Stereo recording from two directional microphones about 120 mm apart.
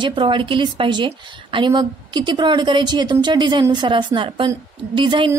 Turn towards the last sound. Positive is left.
turn(degrees=-45)  # may be behind; listen again after turning